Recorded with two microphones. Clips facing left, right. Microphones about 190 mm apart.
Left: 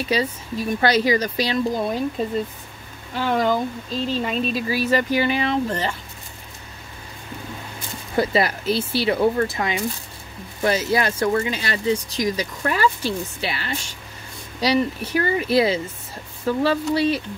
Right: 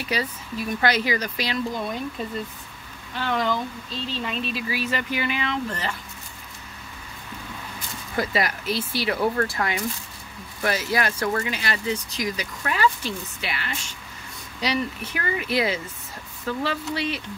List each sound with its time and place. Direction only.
0.0 s speech: 25° left (ahead or behind)
3.2 s speech: 45° left (ahead or behind)
8.2 s speech: 30° left (ahead or behind)
16.9 s speech: 40° left (ahead or behind)